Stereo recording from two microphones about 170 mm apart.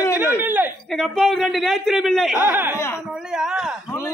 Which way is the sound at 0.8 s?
5° left (ahead or behind).